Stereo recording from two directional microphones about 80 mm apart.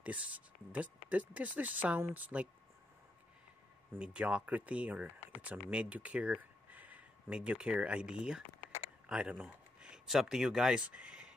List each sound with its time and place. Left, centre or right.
0.0 s speech: centre
4.0 s speech: centre
9.8 s speech: centre